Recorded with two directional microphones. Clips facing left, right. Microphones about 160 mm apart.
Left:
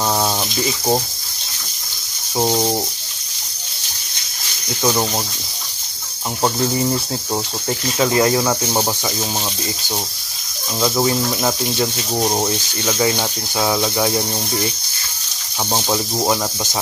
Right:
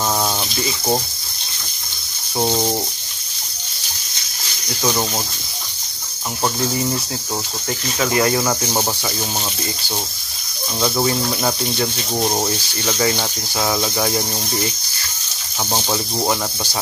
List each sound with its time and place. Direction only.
2.3 s speech: 10° left (ahead or behind)
8.0 s speech: 20° left (ahead or behind)
8.4 s speech: 10° left (ahead or behind)
11.8 s speech: 10° left (ahead or behind)
15.7 s speech: 10° left (ahead or behind)